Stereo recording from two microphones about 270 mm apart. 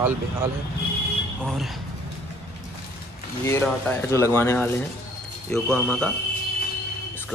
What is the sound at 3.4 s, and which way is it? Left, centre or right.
Speech, centre.